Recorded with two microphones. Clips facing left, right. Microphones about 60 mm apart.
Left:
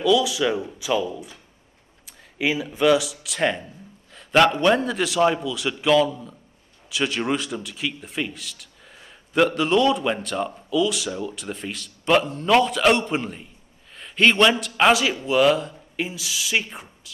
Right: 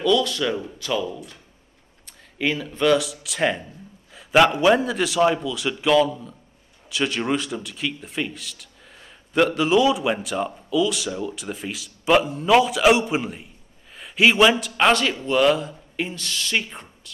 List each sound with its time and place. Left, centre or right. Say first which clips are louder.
0.0 s a man's voice: left 1 dB; centre